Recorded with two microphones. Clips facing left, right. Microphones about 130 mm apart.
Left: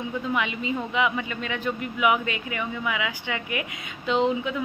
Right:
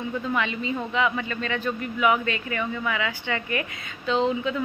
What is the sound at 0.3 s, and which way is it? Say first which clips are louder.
A woman's voice: even; 15° left (ahead or behind).